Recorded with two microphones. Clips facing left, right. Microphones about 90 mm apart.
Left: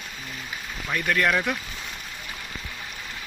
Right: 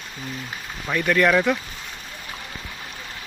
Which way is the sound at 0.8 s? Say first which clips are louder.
Right 4 dB; 15° right (ahead or behind).